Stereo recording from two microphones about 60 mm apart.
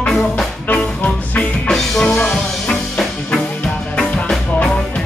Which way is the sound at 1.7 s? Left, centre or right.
Centre.